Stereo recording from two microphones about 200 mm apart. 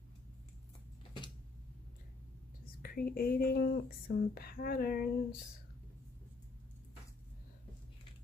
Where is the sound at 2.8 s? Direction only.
50° left (ahead or behind).